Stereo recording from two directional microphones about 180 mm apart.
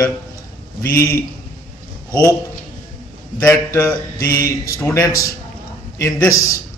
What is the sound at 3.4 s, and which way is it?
Speech, 15° left (ahead or behind).